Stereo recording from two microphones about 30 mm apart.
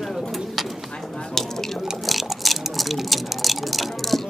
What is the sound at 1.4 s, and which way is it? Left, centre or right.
Speech, centre.